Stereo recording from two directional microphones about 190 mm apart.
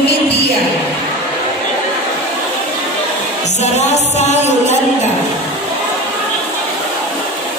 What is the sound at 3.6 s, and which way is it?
Music, 35° left (ahead or behind).